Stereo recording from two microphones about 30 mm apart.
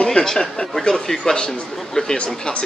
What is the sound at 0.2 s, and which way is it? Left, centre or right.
Speech, left.